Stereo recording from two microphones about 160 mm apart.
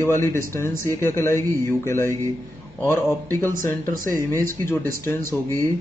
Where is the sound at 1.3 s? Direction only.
60° right (ahead or behind).